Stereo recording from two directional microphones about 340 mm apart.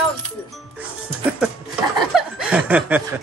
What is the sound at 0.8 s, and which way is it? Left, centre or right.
Music, centre.